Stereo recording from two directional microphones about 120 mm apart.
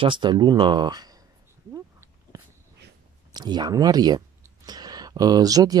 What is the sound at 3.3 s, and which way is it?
Speech, 35° right (ahead or behind).